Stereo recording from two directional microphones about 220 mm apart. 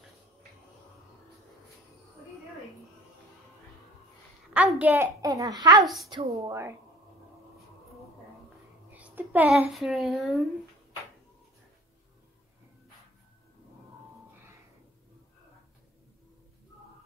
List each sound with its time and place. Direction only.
4.6 s a child's voice: 5° right (ahead or behind)
8.9 s a woman's voice: 5° right (ahead or behind)